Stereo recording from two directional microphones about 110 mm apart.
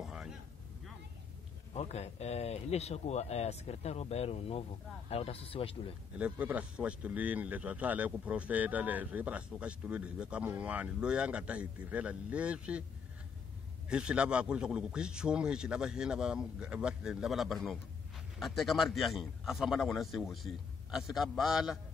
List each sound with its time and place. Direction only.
0.0 s vehicle: 5° right (ahead or behind)
1.7 s speech: 75° left (ahead or behind); by 5.9 s 55° left (ahead or behind)
6.1 s speech: 15° right (ahead or behind)
13.8 s a man's voice: 10° right (ahead or behind)